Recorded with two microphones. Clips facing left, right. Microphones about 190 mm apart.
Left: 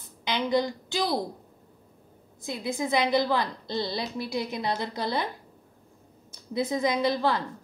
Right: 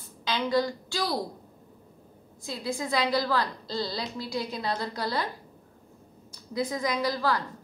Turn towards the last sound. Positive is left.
turn(degrees=25)  # may be behind; listen again after turning